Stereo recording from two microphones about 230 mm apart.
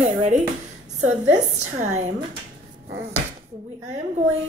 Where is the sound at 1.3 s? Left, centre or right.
Right.